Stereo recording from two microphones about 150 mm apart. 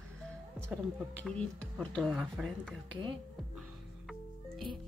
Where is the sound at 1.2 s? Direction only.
5° left (ahead or behind).